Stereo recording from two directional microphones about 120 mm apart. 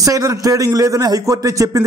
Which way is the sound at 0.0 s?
30° right (ahead or behind).